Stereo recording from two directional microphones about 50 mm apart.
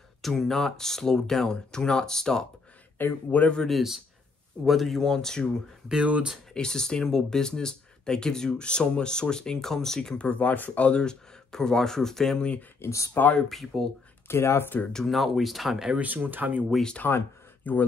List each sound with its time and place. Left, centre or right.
0.2 s speech: centre
3.0 s speech: left
3.6 s speech: centre
6.5 s speech: centre
10.2 s speech: left; by 12.4 s centre
12.8 s speech: left
13.5 s speech: centre
14.2 s speech: left
14.9 s speech: centre
15.1 s speech: centre
16.0 s speech: right
17.0 s speech: left